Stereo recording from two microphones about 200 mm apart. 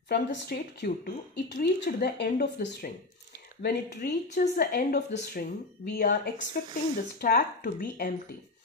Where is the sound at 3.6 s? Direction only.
45° left (ahead or behind).